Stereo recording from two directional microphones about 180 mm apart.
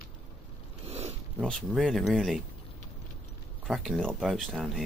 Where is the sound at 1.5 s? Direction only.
Centre (ahead or behind).